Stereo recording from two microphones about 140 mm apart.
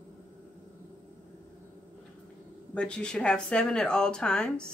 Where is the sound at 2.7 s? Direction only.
5° left (ahead or behind).